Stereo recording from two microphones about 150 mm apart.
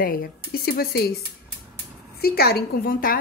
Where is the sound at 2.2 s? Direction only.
90° left; by 3.2 s 70° left (ahead or behind).